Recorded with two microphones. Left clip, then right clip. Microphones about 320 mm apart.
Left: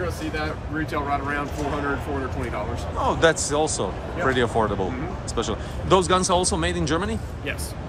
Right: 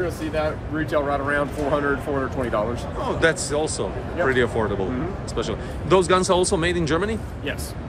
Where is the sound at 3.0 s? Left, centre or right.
Centre.